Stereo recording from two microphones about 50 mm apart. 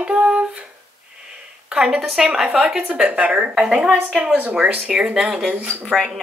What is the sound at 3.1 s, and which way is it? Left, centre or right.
Speech, right.